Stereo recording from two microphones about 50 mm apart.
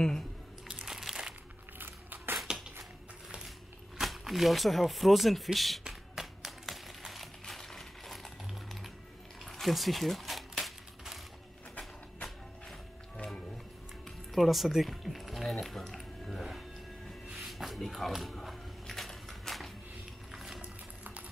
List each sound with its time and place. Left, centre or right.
0.8 s crumpling: centre
1.8 s biting: right
2.3 s a sound: centre
4.0 s speech: centre
5.9 s clapping: centre
7.1 s coin: centre
9.5 s typewriter: centre
13.2 s music: centre
14.0 s music: centre
17.3 s a sound: centre
20.6 s music: right